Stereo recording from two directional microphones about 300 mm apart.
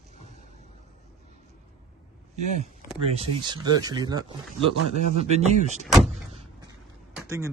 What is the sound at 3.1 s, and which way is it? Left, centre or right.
Speech, centre.